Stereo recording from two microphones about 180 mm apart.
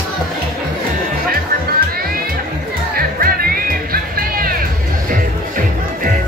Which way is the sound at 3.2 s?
55° right (ahead or behind).